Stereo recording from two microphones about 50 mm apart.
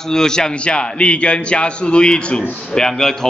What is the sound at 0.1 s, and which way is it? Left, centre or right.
A man's voice, centre.